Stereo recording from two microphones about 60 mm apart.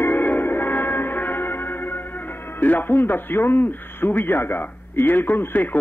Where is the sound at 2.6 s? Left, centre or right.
Left.